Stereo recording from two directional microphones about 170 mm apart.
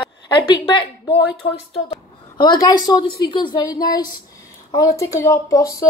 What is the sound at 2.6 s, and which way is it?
A woman's voice, 25° left (ahead or behind).